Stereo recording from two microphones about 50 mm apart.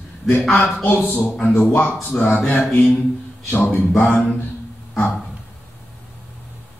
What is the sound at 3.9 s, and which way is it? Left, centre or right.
Speech, left.